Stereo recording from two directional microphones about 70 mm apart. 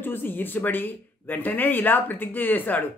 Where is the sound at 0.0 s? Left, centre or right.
Left.